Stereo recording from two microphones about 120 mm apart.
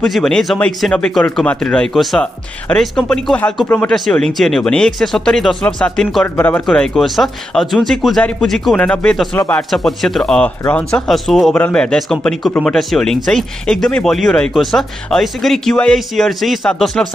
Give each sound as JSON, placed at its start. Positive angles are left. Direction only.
{"t": 0.0, "sound": "speech", "side_deg": 5}
{"t": 4.1, "sound": "speech", "side_deg": 5}
{"t": 6.3, "sound": "speech", "side_deg": 15}
{"t": 6.6, "sound": "speech", "side_deg": 5}
{"t": 11.5, "sound": "speech", "side_deg": 10}